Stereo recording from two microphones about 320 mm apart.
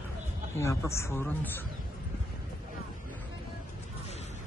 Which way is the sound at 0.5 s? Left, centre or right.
Centre.